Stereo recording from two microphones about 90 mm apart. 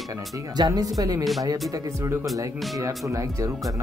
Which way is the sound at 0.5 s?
50° right (ahead or behind).